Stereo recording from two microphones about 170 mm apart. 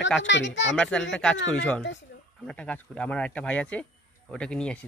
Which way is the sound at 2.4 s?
5° left (ahead or behind).